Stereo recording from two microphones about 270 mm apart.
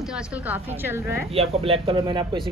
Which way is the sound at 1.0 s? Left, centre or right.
Left.